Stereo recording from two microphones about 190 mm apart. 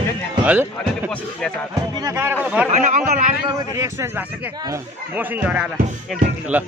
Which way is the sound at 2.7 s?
40° right (ahead or behind).